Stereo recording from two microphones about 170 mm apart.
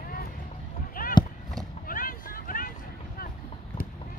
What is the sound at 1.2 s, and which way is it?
Run, 25° left (ahead or behind).